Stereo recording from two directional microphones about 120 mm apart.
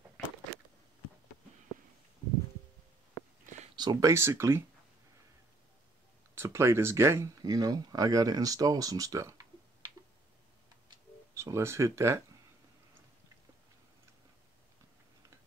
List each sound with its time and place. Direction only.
3.2 s a sound: 40° left (ahead or behind)
3.7 s speech: 30° right (ahead or behind)
6.3 s speech: 20° right (ahead or behind)
11.3 s speech: 25° right (ahead or behind)